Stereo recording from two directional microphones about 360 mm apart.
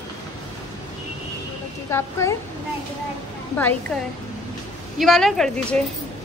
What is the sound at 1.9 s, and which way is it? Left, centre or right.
Speech, centre.